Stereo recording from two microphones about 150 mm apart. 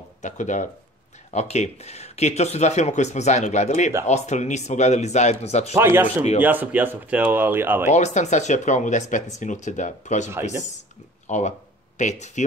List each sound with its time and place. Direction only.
0.2 s speech: 55° left (ahead or behind)
5.8 s speech: 15° right (ahead or behind)
7.9 s speech: 50° left (ahead or behind)